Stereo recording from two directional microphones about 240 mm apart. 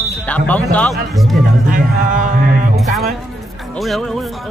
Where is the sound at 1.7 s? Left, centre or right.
Right.